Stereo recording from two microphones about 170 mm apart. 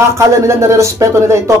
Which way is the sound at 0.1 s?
15° right (ahead or behind).